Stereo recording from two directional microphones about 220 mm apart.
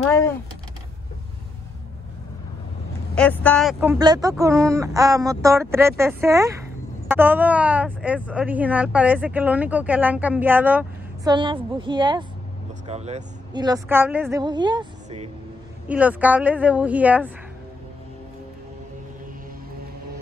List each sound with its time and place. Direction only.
3.2 s speech: 5° left (ahead or behind)
3.8 s speech: 15° right (ahead or behind)
11.3 s a woman's voice: 20° right (ahead or behind)
13.6 s speech: 15° right (ahead or behind)
15.9 s speech: 5° right (ahead or behind)